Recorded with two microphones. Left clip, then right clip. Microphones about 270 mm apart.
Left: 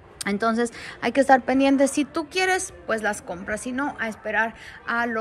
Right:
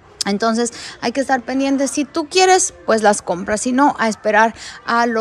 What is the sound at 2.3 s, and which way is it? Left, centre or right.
A woman's voice, centre.